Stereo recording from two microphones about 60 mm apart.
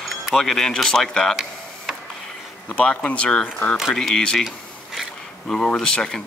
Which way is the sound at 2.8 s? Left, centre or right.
Centre.